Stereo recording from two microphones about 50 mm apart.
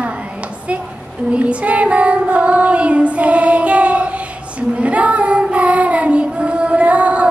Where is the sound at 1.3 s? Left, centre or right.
Right.